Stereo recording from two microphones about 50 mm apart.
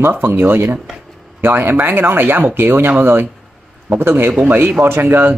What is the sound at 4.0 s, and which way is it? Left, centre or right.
Speech, right.